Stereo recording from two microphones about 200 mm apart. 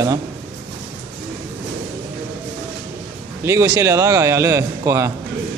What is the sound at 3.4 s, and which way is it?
A man's voice, 15° right (ahead or behind).